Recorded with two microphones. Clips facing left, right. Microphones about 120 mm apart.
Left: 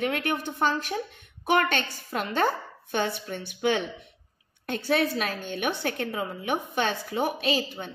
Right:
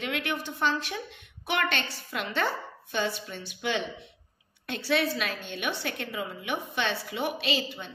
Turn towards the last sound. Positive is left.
turn(degrees=50)  # may be behind; listen again after turning